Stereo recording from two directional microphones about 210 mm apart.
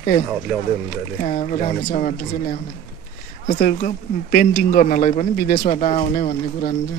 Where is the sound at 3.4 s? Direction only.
40° left (ahead or behind).